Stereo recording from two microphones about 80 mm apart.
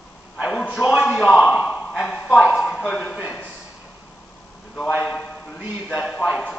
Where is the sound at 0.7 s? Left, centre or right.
Centre.